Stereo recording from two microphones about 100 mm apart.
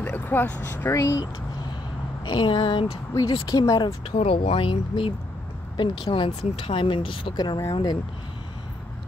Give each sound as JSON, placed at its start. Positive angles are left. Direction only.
{"t": 0.0, "sound": "speech", "side_deg": 20}
{"t": 2.2, "sound": "vehicle", "side_deg": 50}
{"t": 3.3, "sound": "vehicle", "side_deg": 45}
{"t": 4.2, "sound": "speech", "side_deg": 75}
{"t": 7.3, "sound": "vehicle", "side_deg": 45}